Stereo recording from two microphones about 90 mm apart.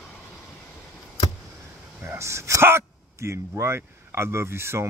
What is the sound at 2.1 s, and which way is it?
Speech, 35° right (ahead or behind).